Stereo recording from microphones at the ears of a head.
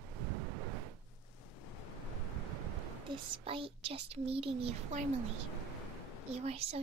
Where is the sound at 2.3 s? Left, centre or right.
Right.